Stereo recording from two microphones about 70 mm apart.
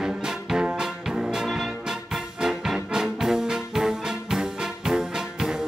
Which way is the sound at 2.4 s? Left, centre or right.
Centre.